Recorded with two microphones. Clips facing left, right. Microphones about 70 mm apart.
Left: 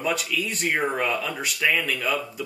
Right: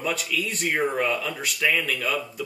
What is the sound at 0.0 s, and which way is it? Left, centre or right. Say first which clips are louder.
Speech: left 1 dB; centre.